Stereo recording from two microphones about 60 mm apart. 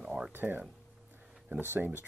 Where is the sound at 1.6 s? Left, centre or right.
Right.